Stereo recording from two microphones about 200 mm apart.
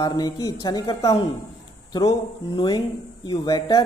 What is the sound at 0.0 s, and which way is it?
A man's voice, 20° left (ahead or behind).